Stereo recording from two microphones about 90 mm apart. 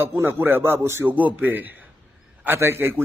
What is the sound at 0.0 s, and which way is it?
A man's voice, 25° right (ahead or behind).